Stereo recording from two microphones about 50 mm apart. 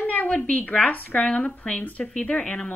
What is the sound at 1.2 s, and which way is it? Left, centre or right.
Speech, left.